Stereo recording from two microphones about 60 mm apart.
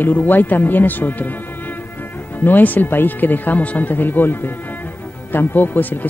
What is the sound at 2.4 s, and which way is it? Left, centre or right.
Speech, left.